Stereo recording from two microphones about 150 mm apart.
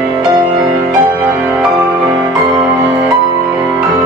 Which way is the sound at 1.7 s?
20° right (ahead or behind).